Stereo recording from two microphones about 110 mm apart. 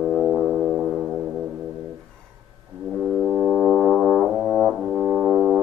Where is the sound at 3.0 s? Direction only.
5° right (ahead or behind).